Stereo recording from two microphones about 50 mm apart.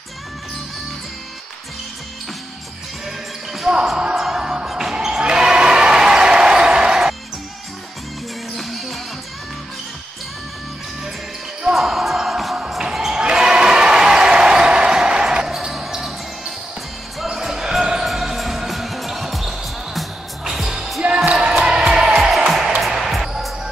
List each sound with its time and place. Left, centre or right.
3.6 s basketball bounce: centre
4.2 s music: centre
4.9 s basketball bounce: centre
8.5 s music: centre
11.7 s music: centre
12.9 s basketball bounce: centre
15.5 s basketball bounce: centre
21.3 s music: centre